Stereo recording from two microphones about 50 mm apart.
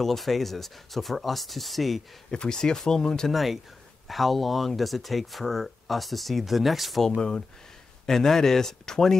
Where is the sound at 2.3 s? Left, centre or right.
Centre.